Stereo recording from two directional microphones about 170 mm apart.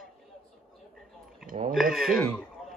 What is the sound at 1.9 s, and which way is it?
Speech, centre (ahead or behind).